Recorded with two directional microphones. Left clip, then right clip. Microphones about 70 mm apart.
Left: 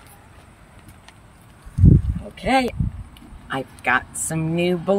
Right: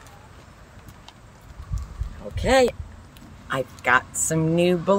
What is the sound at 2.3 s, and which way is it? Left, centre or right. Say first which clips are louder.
Speech: right 2 dB; right.